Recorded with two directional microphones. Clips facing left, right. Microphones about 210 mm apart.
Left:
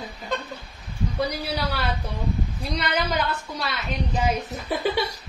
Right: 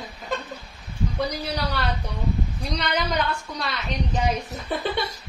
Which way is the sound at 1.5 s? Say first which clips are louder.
Even; 5° left (ahead or behind).